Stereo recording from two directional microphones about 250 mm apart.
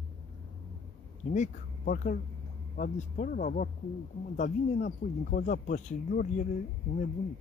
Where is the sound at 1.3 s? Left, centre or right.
Left.